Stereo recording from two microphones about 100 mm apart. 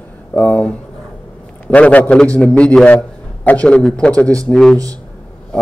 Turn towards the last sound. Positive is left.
turn(degrees=5)  # may be behind; listen again after turning